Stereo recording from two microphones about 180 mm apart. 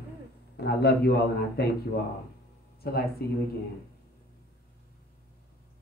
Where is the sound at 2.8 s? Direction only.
60° left (ahead or behind).